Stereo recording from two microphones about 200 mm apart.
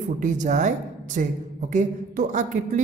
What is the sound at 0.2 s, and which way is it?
Speech, 40° right (ahead or behind).